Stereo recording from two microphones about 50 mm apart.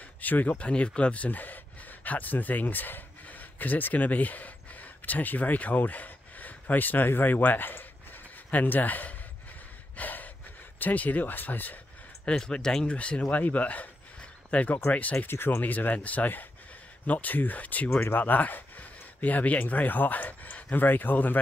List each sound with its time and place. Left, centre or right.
0.2 s speech: left
0.6 s speech: left
9.9 s gasp: left
10.8 s speech: left
12.3 s speech: centre
15.2 s speech: left
15.6 s speech: left